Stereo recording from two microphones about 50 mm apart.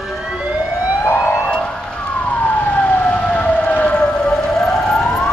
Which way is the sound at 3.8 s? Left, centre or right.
Centre.